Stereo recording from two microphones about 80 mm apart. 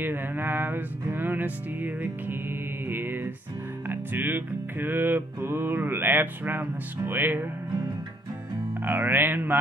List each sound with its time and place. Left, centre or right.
0.0 s music: right
8.8 s music: right